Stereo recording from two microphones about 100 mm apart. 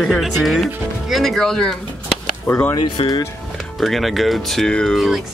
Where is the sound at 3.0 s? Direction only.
70° left (ahead or behind).